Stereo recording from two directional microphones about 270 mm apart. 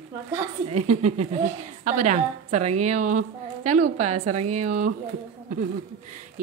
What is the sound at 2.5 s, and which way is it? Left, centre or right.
Speech, right.